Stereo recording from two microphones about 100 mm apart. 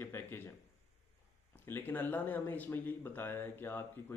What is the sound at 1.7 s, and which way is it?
Speech, 20° left (ahead or behind).